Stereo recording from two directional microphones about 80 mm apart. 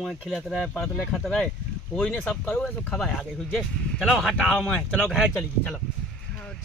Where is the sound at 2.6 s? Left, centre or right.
Centre.